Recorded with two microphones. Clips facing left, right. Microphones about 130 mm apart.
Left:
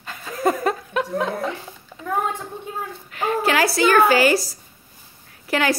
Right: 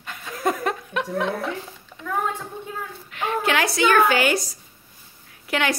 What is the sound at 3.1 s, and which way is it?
Speech, centre (ahead or behind).